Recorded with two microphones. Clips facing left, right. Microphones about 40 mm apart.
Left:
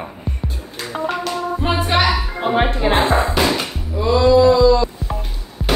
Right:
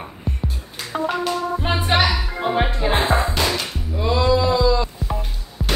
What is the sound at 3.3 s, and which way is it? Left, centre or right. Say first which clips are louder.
Music: left 4 dB; centre.